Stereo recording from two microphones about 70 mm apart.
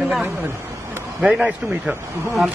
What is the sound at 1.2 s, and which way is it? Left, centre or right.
Speech, centre.